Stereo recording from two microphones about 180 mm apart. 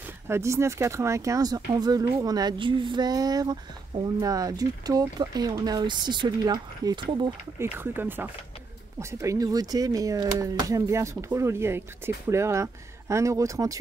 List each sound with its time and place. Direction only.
0.0 s speech: 15° right (ahead or behind)
7.5 s speech: 10° right (ahead or behind)